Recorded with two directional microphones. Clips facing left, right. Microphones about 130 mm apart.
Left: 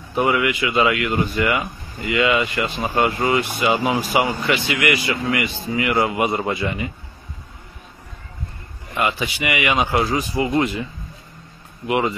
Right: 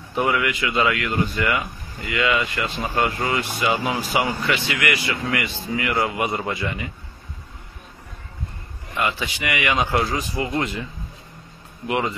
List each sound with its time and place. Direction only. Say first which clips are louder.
0.1 s speech: left 3 dB; 15° left (ahead or behind)
8.9 s speech: left 3 dB; 15° left (ahead or behind)